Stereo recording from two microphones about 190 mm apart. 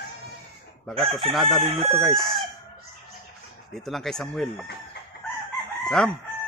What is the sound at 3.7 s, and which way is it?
Speech, centre (ahead or behind).